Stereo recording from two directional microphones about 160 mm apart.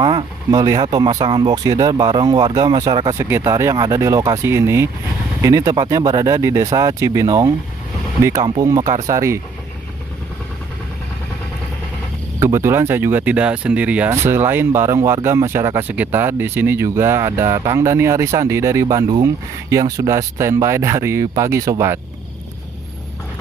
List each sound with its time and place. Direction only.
0.0 s speech: 25° right (ahead or behind)
12.4 s speech: 15° right (ahead or behind)